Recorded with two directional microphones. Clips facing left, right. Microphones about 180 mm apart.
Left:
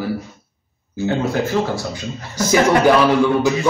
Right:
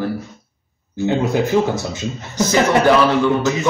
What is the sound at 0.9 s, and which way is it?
A man's voice, 15° right (ahead or behind).